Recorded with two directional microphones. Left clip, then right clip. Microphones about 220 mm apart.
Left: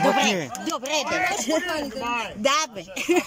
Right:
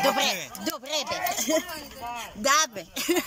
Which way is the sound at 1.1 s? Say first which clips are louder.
Left 2 dB; 45° left (ahead or behind).